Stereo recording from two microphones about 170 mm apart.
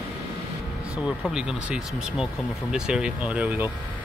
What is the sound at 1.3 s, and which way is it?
Speech, 5° right (ahead or behind).